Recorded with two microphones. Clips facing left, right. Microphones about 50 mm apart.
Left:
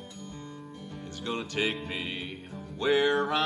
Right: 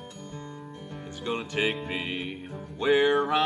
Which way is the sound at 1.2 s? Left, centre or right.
Centre.